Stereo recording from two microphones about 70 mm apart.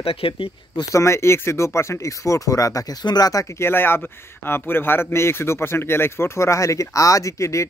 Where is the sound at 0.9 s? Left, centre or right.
Left.